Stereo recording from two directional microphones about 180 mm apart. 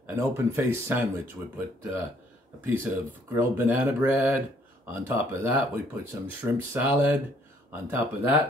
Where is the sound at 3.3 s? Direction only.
10° right (ahead or behind).